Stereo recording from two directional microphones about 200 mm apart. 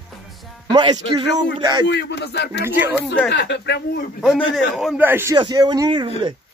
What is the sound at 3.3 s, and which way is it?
Speech, 55° left (ahead or behind).